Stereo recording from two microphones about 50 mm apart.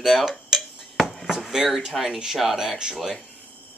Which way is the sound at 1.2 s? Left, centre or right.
Centre.